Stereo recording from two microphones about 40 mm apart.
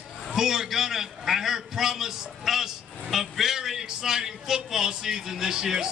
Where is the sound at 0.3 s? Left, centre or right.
Centre.